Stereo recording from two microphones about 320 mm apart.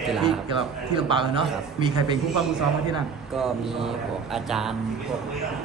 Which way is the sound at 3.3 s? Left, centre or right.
Centre.